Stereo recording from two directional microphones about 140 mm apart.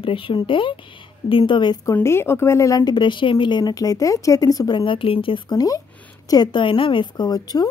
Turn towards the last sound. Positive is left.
turn(degrees=30)  # may be behind; listen again after turning